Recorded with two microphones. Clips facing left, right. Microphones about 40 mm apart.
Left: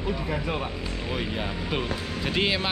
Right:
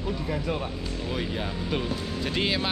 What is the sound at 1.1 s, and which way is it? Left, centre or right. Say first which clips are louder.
Speech: left 1 dB; centre.